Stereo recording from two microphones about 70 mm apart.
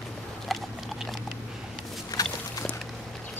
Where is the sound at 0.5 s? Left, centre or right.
Centre.